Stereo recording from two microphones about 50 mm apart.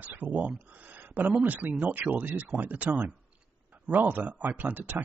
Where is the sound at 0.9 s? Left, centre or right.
Right.